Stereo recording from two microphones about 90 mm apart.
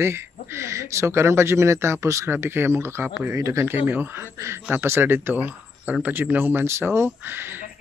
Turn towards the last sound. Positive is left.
turn(degrees=-25)  # may be behind; listen again after turning